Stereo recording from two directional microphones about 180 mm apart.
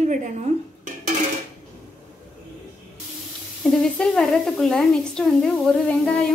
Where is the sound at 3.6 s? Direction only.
Centre (ahead or behind).